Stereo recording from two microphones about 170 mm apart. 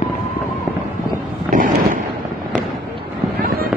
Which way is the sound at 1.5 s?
55° right (ahead or behind).